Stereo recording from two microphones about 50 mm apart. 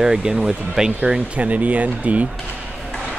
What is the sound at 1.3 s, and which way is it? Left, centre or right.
Speech, right.